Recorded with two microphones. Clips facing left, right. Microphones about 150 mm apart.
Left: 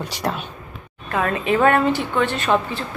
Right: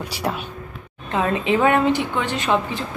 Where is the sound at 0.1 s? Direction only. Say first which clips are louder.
Right 1 dB; 10° right (ahead or behind).